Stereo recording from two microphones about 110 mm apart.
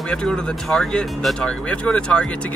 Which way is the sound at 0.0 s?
5° left (ahead or behind).